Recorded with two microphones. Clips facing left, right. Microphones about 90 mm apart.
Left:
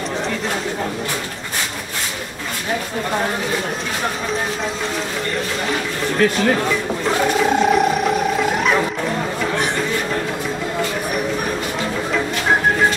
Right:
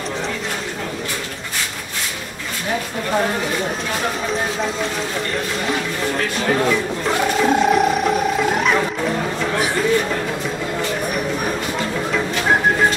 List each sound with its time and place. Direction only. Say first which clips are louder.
7.1 s music: even; centre (ahead or behind)